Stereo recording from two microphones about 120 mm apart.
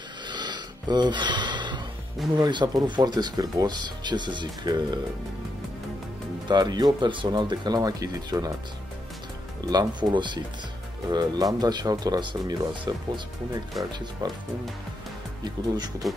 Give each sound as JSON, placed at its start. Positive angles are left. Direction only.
{"t": 0.3, "sound": "snort", "side_deg": -40}
{"t": 2.3, "sound": "speech", "side_deg": -40}
{"t": 6.4, "sound": "speech", "side_deg": -35}
{"t": 9.6, "sound": "speech", "side_deg": -35}
{"t": 14.2, "sound": "speech", "side_deg": -30}
{"t": 15.4, "sound": "speech", "side_deg": -35}